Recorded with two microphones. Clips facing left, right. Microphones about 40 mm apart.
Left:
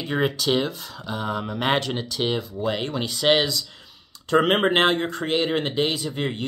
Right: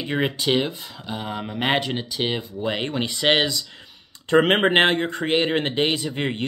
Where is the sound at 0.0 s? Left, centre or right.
Right.